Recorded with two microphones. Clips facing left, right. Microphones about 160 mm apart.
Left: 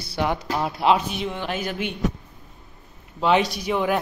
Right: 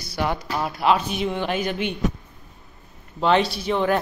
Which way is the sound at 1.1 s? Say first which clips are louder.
Right 3 dB; centre (ahead or behind).